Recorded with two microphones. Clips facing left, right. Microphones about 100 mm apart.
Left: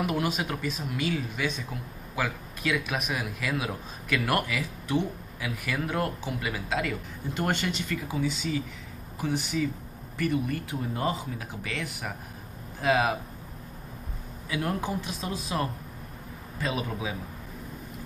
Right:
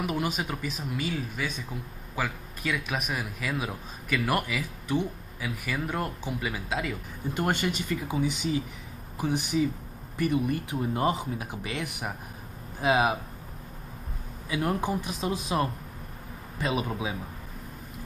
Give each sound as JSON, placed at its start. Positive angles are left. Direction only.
{"t": 0.0, "sound": "speech", "side_deg": 0}
{"t": 14.5, "sound": "speech", "side_deg": -15}